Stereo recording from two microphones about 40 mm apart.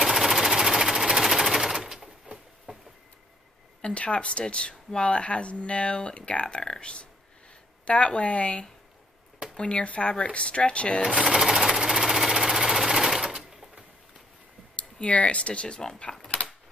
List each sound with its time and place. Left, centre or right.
0.0 s sewing machine: centre
2.7 s a sound: right
3.8 s speech: left
11.2 s sewing machine: centre
14.8 s speech: left